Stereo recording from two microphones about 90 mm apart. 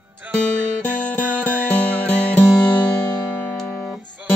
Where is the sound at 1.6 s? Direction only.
20° left (ahead or behind).